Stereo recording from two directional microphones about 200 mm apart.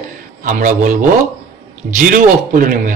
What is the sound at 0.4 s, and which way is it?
A man's voice, 40° right (ahead or behind).